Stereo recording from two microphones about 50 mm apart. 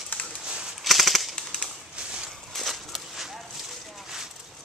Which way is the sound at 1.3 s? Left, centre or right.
Centre.